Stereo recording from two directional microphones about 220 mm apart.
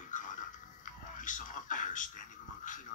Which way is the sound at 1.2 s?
35° left (ahead or behind).